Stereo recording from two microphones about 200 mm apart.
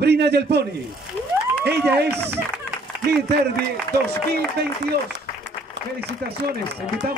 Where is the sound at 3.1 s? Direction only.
55° right (ahead or behind).